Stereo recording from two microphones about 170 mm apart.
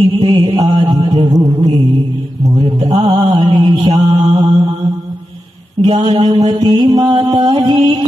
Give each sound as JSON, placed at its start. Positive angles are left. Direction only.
{"t": 0.0, "sound": "mantra", "side_deg": -30}
{"t": 1.1, "sound": "music", "side_deg": -40}
{"t": 2.5, "sound": "mantra", "side_deg": -30}
{"t": 5.9, "sound": "mantra", "side_deg": -35}
{"t": 6.6, "sound": "music", "side_deg": -25}